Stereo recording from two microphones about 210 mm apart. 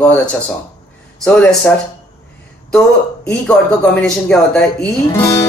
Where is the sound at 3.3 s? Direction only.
5° left (ahead or behind).